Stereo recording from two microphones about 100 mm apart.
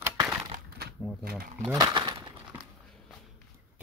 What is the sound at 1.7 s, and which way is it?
Speech, 45° right (ahead or behind).